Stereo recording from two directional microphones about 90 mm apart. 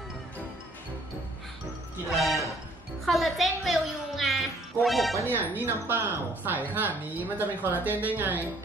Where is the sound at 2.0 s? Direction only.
Centre (ahead or behind).